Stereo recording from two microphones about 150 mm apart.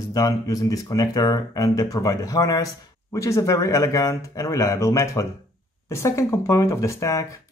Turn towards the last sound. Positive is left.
turn(degrees=20)  # may be behind; listen again after turning